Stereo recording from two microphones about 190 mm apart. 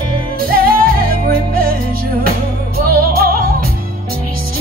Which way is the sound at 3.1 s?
50° right (ahead or behind).